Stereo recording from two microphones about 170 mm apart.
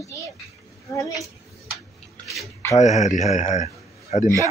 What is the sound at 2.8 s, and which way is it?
A man's voice, 45° left (ahead or behind).